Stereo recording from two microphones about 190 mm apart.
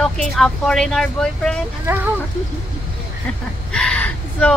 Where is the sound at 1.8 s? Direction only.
10° right (ahead or behind).